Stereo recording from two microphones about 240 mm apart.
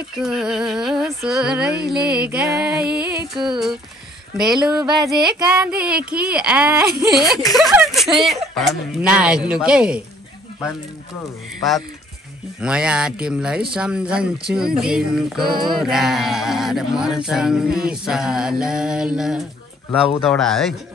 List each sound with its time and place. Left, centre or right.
0.1 s speech: centre
2.6 s music: centre
3.3 s speech: centre
12.5 s speech: centre